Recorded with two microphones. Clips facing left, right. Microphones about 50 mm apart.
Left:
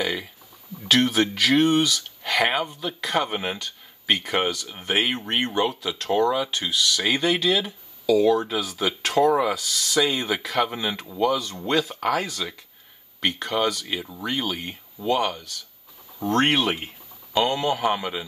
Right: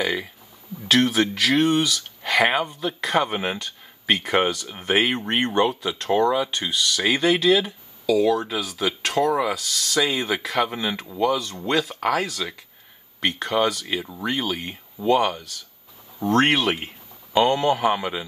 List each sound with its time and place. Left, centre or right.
0.0 s speech: centre
5.1 s speech: right; by 16.8 s centre
16.8 s speech: centre